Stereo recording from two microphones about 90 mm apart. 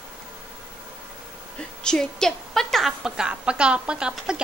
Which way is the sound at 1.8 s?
5° left (ahead or behind).